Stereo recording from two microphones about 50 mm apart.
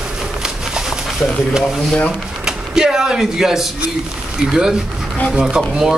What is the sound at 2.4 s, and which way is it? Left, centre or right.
A man's voice, centre.